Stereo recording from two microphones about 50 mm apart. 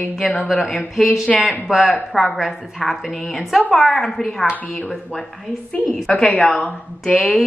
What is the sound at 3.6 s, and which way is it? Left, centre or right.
Speech, centre.